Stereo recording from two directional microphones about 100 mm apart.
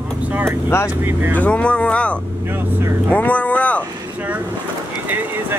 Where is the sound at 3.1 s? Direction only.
15° left (ahead or behind).